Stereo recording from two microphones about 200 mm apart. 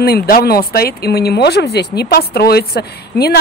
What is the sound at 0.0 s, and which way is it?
Speech, 50° left (ahead or behind).